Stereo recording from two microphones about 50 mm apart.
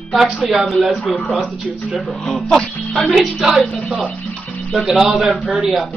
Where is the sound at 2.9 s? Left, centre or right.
Centre.